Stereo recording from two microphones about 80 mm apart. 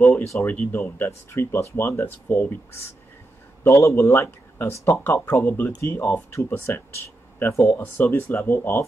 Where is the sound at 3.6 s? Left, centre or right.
Left.